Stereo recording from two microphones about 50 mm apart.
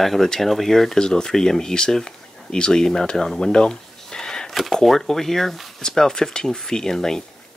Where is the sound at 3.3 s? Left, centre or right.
Centre.